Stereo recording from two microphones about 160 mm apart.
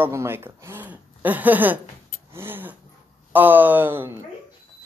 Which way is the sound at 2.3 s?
10° right (ahead or behind).